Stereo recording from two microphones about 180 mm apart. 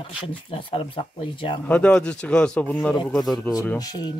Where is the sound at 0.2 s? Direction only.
30° left (ahead or behind).